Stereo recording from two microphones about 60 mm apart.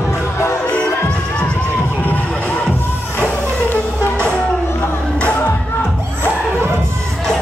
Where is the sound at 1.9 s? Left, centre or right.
Left.